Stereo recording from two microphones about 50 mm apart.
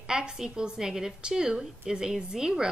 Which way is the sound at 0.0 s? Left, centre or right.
Centre.